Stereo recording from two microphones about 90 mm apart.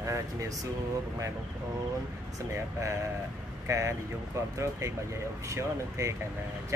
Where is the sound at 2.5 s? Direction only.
30° right (ahead or behind).